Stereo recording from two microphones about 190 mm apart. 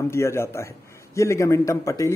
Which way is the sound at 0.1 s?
15° left (ahead or behind).